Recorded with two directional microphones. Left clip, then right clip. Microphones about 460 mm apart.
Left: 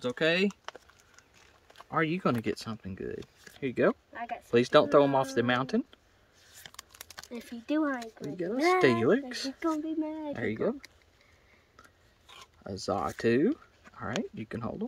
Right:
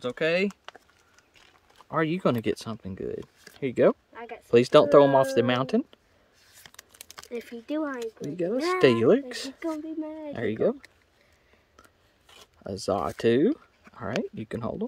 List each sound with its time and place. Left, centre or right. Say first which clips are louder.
0.0 s a sound: right 2 dB; centre
1.9 s speech: right 3 dB; centre
4.1 s speech: left 2 dB; centre
4.5 s speech: right 5 dB; centre
6.6 s a sound: left 1 dB; centre
7.2 s speech: right 7 dB; centre
8.4 s speech: right 2 dB; centre
9.6 s speech: left 2 dB; centre
10.3 s speech: right 7 dB; centre
12.6 s speech: right 4 dB; centre